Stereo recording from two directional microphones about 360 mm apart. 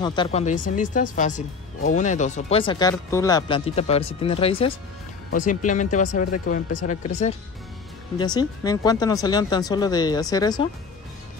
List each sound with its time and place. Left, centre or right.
0.0 s speech: centre